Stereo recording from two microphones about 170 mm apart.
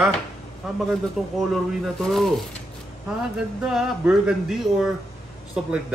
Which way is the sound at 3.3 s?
5° right (ahead or behind).